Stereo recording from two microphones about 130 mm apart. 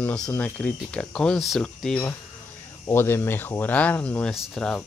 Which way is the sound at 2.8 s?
20° left (ahead or behind).